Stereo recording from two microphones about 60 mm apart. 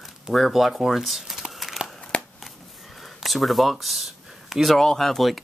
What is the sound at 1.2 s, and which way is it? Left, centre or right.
Crumpling, centre.